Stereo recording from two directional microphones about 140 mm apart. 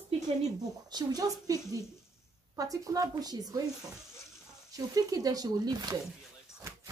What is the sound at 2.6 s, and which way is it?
Speech, 25° right (ahead or behind).